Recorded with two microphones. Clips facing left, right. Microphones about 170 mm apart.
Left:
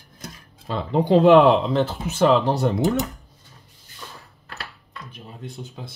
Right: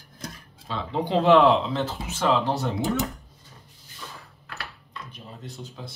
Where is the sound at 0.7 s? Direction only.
50° left (ahead or behind).